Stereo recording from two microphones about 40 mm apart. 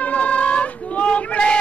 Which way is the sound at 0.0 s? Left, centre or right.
Left.